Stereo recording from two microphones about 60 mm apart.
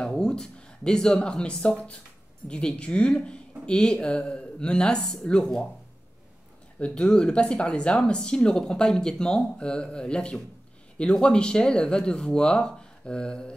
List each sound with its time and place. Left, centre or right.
0.0 s speech: centre
6.8 s speech: centre